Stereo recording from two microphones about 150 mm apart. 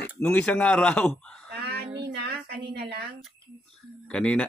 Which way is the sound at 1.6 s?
90° right.